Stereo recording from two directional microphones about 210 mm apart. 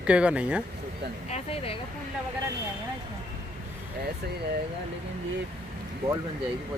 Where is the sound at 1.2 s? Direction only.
30° left (ahead or behind).